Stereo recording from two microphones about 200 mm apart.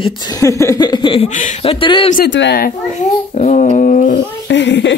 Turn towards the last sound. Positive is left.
turn(degrees=65)  # may be behind; listen again after turning